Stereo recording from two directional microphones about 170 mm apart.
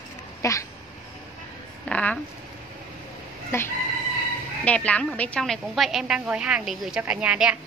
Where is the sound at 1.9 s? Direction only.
5° left (ahead or behind).